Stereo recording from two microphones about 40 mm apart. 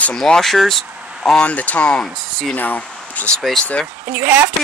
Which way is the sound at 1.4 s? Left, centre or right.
Left.